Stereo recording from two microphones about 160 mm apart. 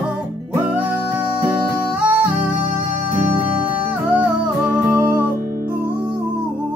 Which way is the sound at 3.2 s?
10° right (ahead or behind).